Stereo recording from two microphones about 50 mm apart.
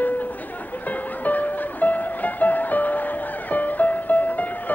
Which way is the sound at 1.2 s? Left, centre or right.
Left.